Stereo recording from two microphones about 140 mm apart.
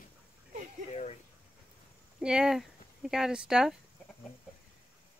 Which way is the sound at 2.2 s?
5° right (ahead or behind).